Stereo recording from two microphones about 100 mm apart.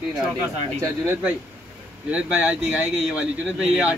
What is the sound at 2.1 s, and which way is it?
Speech, 10° right (ahead or behind).